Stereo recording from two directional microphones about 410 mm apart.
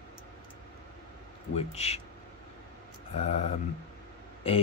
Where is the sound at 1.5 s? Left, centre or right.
Centre.